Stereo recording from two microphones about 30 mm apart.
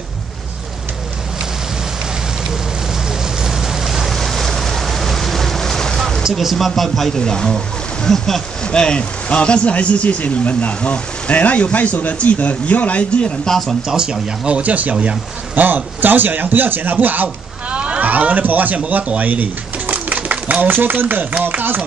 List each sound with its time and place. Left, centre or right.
3.1 s vehicle: centre
4.1 s vehicle: centre
6.5 s speech: centre
7.2 s speech: left
8.6 s speech: left
13.8 s speech: right
14.6 s speech: right
15.5 s a man's voice: right
17.6 s a sound: right
18.0 s speech: right
19.2 s pigeon: right
20.6 s a man's voice: right
21.5 s speech: right